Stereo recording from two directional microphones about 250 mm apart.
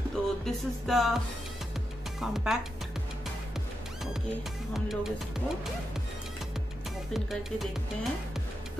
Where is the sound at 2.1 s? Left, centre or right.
Centre.